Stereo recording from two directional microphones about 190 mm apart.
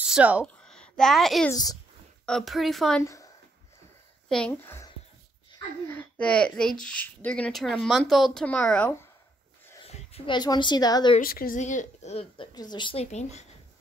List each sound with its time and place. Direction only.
0.0 s speech: 5° right (ahead or behind)
0.6 s a sound: 5° left (ahead or behind)
1.5 s speech: 20° left (ahead or behind)
2.2 s speech: centre (ahead or behind)
3.0 s a woman's voice: 15° left (ahead or behind)
4.3 s a woman's voice: 5° left (ahead or behind)
5.9 s speech: 10° left (ahead or behind)
9.8 s a woman's voice: 30° left (ahead or behind)
11.1 s a woman's voice: 50° left (ahead or behind); by 12.4 s 35° left (ahead or behind)
12.5 s a woman's voice: 25° left (ahead or behind)